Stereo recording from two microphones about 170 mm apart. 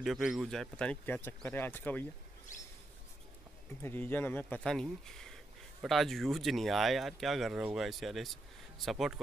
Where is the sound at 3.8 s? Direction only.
10° left (ahead or behind).